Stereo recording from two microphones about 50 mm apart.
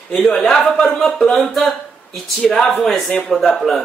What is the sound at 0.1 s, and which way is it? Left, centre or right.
Speech, centre.